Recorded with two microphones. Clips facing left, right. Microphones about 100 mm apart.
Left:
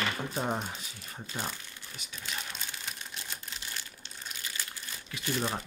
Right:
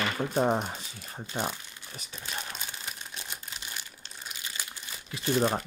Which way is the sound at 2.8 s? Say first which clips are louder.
Right 1 dB; 15° right (ahead or behind).